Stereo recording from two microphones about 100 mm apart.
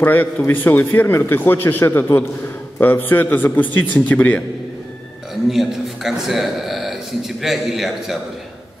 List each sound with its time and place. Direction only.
0.0 s a man's voice: 15° left (ahead or behind)
5.5 s a man's voice: 5° right (ahead or behind)